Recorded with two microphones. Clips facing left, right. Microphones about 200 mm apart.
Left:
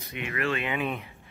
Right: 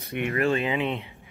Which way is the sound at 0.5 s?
30° right (ahead or behind).